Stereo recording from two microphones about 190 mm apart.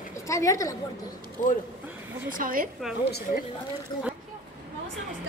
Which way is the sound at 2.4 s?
45° right (ahead or behind).